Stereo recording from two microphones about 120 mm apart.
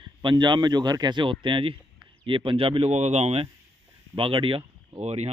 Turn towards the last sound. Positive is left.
turn(degrees=-65)  # may be behind; listen again after turning